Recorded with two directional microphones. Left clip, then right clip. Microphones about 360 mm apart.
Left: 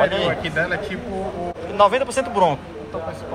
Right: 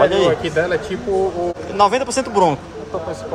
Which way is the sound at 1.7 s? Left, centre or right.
Centre.